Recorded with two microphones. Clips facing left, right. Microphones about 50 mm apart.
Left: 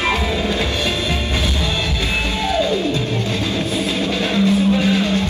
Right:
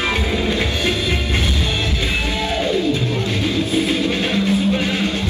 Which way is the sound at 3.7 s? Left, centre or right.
Right.